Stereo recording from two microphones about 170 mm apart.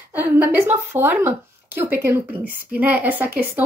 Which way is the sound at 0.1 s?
10° right (ahead or behind).